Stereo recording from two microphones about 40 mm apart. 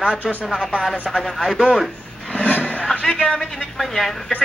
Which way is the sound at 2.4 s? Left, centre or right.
Left.